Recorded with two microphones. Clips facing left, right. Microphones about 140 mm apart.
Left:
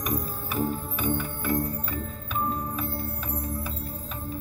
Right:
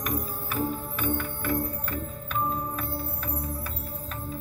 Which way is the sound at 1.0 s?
15° left (ahead or behind).